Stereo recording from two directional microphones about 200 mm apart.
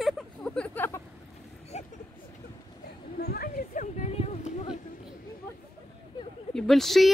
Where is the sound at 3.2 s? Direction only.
50° left (ahead or behind); by 4.7 s 35° left (ahead or behind).